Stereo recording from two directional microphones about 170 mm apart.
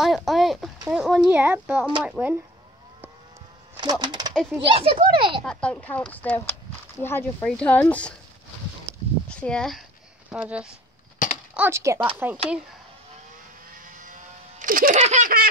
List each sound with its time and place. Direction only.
0.0 s a sound: centre (ahead or behind)
2.0 s speech: 5° right (ahead or behind)
3.7 s a child's voice: 25° right (ahead or behind)
5.4 s speech: 5° left (ahead or behind)
9.4 s speech: 5° left (ahead or behind)
11.2 s a sound: 50° left (ahead or behind)
11.5 s speech: 15° right (ahead or behind)
13.7 s sheep: 50° right (ahead or behind)
15.0 s laughter: 45° right (ahead or behind)